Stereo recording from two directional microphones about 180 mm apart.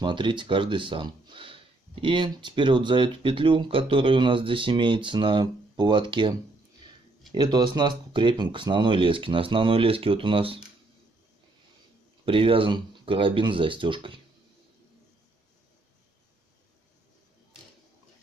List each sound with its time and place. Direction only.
0.0 s speech: 25° right (ahead or behind)
7.3 s speech: 25° right (ahead or behind)
12.3 s speech: 30° right (ahead or behind)